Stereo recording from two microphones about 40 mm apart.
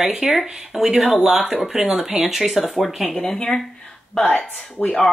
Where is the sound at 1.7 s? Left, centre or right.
Centre.